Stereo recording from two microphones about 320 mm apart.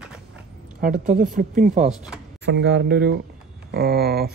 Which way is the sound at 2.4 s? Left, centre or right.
Right.